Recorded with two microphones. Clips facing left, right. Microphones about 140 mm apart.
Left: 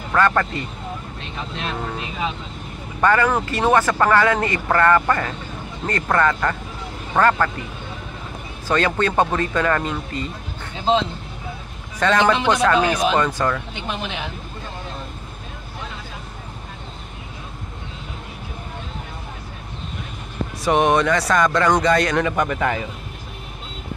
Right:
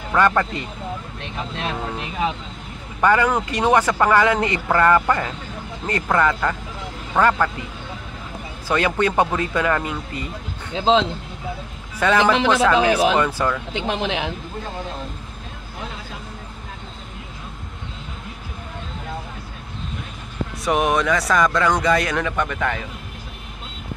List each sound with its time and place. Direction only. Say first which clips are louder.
0.4 s speech: even; 15° right (ahead or behind)
3.0 s speech: even; 15° right (ahead or behind)
8.6 s speech: even; 10° right (ahead or behind)
10.7 s speech: right 2 dB; 90° right
12.0 s speech: even; 10° right (ahead or behind)
13.7 s speech: right 5 dB; 90° right
20.6 s speech: left 2 dB; centre (ahead or behind)
22.4 s speech: left 2 dB; 10° left (ahead or behind)